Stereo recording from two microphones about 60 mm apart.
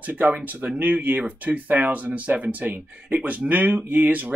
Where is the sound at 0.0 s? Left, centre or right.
Right.